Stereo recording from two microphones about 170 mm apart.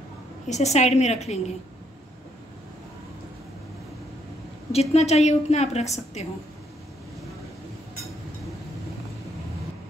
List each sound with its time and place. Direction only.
0.5 s a woman's voice: 40° left (ahead or behind)
4.7 s a woman's voice: 40° left (ahead or behind)